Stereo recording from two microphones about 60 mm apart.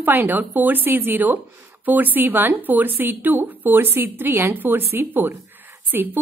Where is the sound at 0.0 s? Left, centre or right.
Right.